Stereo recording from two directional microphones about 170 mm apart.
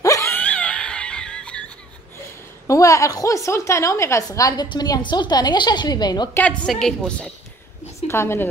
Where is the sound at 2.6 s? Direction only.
20° left (ahead or behind).